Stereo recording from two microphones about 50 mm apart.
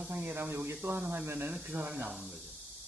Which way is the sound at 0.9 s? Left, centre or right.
Right.